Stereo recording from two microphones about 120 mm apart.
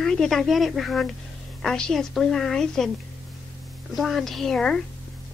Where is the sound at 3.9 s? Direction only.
Centre (ahead or behind).